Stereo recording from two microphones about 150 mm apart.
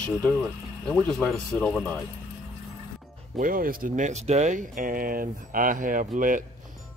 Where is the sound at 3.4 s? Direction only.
70° right (ahead or behind).